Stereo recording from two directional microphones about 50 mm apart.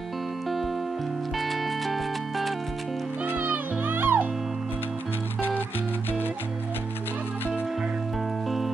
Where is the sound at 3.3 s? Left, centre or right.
Right.